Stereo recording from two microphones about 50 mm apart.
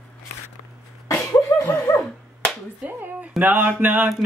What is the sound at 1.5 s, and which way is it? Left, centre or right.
Dog, left.